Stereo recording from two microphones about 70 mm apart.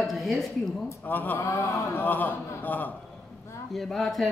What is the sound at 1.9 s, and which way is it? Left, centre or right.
A man's voice, left.